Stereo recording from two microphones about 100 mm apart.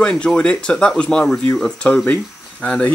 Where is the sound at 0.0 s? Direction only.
10° left (ahead or behind).